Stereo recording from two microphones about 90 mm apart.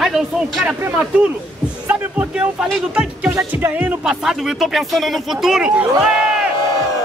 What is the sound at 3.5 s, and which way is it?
Music, 20° right (ahead or behind).